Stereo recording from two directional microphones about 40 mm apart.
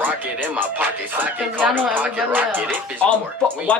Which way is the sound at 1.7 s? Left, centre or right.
Right.